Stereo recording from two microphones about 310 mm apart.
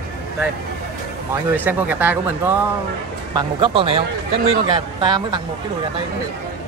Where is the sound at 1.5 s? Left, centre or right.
Centre.